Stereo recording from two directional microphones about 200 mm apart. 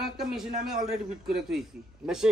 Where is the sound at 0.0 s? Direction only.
Centre (ahead or behind).